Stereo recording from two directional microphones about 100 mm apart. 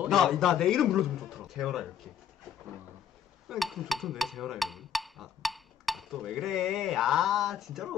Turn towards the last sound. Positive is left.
turn(degrees=0)  # may be behind; listen again after turning